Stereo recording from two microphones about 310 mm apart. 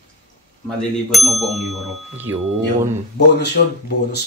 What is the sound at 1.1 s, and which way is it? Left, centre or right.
Speech, centre.